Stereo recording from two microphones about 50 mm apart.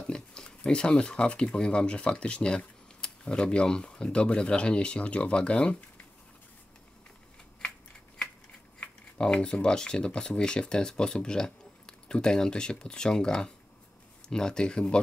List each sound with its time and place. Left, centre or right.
0.0 s speech: centre
8.7 s speech: centre